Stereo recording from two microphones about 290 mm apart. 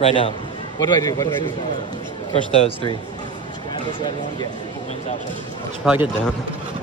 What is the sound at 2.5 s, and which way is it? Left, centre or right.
Speech, left.